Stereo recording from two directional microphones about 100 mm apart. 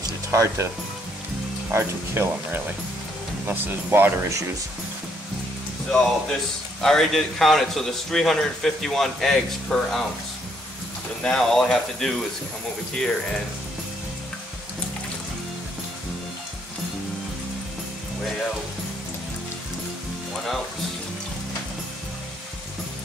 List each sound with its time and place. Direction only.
0.3 s speech: 30° right (ahead or behind)
1.7 s speech: 25° right (ahead or behind)
5.9 s a man's voice: 5° left (ahead or behind)
11.2 s a man's voice: 5° left (ahead or behind)